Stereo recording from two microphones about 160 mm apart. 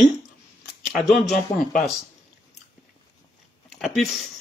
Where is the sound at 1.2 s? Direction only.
55° left (ahead or behind).